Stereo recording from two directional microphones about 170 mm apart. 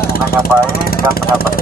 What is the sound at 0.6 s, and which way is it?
Speech, 60° left (ahead or behind).